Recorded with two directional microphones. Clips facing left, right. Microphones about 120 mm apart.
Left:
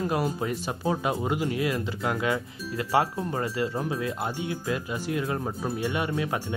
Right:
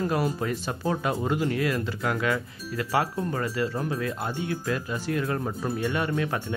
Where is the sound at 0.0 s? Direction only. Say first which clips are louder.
Right 1 dB; 10° left (ahead or behind).